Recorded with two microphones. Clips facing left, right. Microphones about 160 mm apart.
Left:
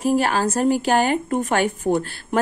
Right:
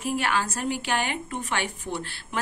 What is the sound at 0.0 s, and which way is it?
Speech, 40° left (ahead or behind).